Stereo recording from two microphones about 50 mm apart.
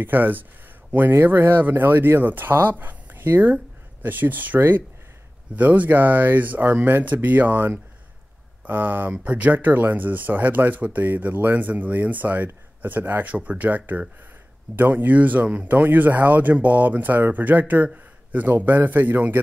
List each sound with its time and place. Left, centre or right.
0.0 s speech: right
2.8 s a sound: right
4.0 s speech: right